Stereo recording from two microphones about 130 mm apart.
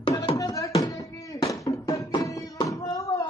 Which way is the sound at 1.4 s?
25° left (ahead or behind).